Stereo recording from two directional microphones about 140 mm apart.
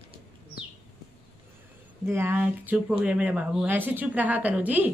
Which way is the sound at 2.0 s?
20° right (ahead or behind).